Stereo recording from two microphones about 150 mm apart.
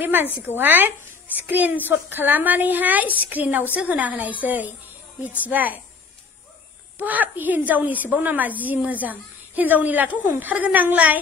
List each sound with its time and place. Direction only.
0.0 s a woman's voice: 15° right (ahead or behind)
7.0 s a woman's voice: 10° right (ahead or behind)